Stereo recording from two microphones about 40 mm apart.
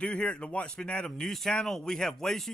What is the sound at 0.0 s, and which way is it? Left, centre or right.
Speech, left.